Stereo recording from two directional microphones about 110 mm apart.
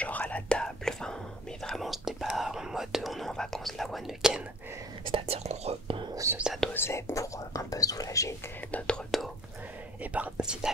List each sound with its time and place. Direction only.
0.0 s whispering: 15° left (ahead or behind); by 4.4 s centre (ahead or behind)
5.0 s speech: 60° right (ahead or behind)
6.3 s speech: 5° right (ahead or behind)
6.7 s speech: 25° left (ahead or behind)
8.7 s whispering: 10° left (ahead or behind)
10.1 s speech: 10° right (ahead or behind)